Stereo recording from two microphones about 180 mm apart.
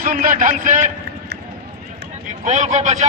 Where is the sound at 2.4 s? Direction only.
40° right (ahead or behind).